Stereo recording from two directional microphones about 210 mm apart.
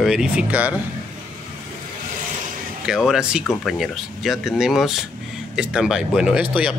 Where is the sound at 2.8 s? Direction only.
Centre (ahead or behind).